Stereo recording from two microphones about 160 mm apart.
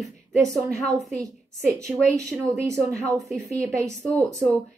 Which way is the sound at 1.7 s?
20° right (ahead or behind).